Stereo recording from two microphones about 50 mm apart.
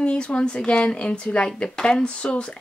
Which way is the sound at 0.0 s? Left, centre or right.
Left.